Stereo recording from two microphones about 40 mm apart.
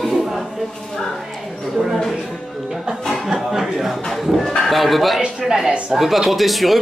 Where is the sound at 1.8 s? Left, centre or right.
Right.